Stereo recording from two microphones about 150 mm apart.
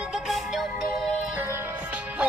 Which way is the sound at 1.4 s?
15° right (ahead or behind).